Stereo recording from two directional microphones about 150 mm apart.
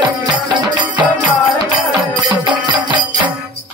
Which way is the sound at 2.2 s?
30° right (ahead or behind).